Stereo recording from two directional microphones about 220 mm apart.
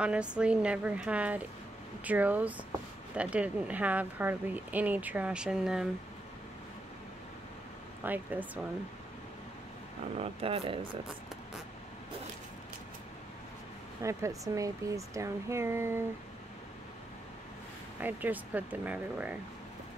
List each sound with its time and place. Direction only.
0.0 s speech: 5° right (ahead or behind)
8.0 s speech: 10° right (ahead or behind)
10.1 s speech: 25° right (ahead or behind)
14.0 s speech: 15° right (ahead or behind)
18.0 s speech: 5° right (ahead or behind)